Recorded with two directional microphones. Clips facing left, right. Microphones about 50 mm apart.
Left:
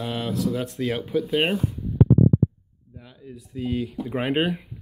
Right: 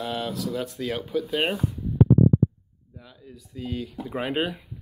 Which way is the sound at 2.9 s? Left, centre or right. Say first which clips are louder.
Left 2 dB; centre.